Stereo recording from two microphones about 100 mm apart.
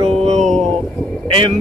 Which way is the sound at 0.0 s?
90° right.